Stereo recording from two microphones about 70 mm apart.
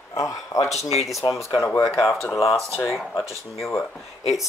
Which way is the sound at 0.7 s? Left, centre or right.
Centre.